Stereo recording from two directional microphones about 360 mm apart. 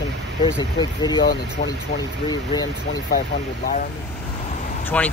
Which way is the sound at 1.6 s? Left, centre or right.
Left.